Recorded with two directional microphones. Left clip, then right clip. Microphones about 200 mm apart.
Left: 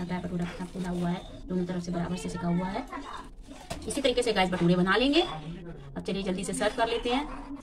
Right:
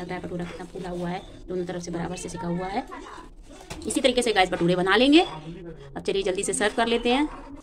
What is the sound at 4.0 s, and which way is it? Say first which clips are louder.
A woman's voice: right 5 dB; 55° right (ahead or behind).